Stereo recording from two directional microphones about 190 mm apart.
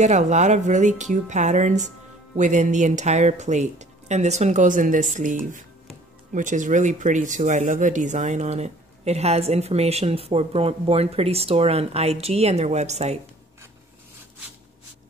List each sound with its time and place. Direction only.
0.0 s speech: 40° right (ahead or behind)